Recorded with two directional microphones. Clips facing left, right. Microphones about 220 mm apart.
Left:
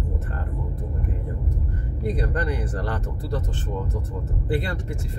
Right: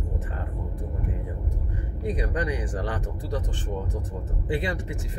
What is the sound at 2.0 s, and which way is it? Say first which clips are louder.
Speech: left 2 dB; 15° right (ahead or behind).